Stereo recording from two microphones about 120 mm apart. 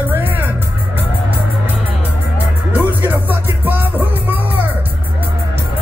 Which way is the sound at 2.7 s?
15° right (ahead or behind).